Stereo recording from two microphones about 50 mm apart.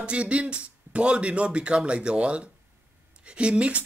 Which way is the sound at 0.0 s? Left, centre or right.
Right.